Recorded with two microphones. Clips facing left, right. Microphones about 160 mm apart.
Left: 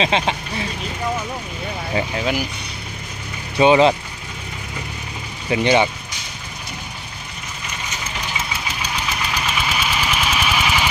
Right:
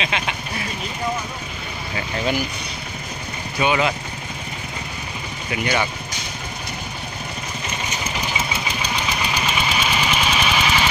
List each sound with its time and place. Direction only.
0.0 s speech: 30° left (ahead or behind)
2.1 s speech: 5° left (ahead or behind)
3.5 s speech: 30° left (ahead or behind)
5.5 s speech: 25° left (ahead or behind)
8.9 s engine: centre (ahead or behind)